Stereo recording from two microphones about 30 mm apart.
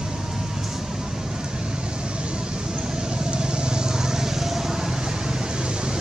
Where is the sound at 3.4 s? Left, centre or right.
Right.